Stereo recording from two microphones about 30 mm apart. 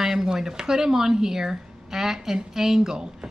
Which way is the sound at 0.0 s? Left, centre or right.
Centre.